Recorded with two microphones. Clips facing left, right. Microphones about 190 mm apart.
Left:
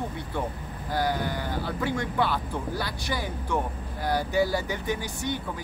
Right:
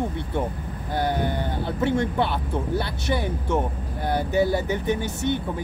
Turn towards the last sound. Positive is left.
turn(degrees=-25)  # may be behind; listen again after turning